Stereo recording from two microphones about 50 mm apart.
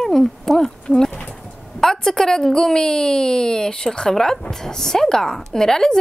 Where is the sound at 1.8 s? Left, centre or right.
Centre.